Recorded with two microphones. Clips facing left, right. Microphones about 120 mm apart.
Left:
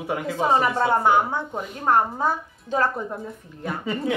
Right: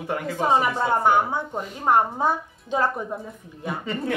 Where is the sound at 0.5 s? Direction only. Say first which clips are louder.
Left 2 dB; centre (ahead or behind).